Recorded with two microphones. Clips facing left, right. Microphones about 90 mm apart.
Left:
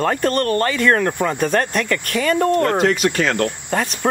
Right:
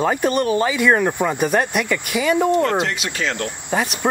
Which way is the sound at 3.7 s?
5° right (ahead or behind).